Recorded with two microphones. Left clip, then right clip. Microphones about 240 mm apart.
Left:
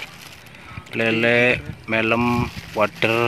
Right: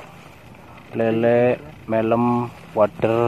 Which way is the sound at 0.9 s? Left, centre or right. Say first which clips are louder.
Even; centre.